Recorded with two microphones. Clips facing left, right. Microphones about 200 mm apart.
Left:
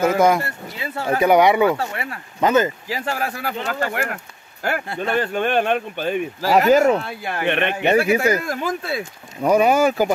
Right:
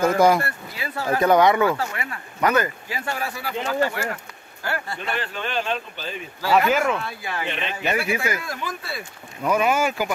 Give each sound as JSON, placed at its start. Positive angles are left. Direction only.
{"t": 0.0, "sound": "speech", "side_deg": 5}
{"t": 0.4, "sound": "speech", "side_deg": 25}
{"t": 1.2, "sound": "speech", "side_deg": 15}
{"t": 1.8, "sound": "speech", "side_deg": 30}
{"t": 3.6, "sound": "speech", "side_deg": 65}
{"t": 4.6, "sound": "speech", "side_deg": 50}
{"t": 6.4, "sound": "speech", "side_deg": 40}
{"t": 7.1, "sound": "speech", "side_deg": 55}
{"t": 8.0, "sound": "speech", "side_deg": 40}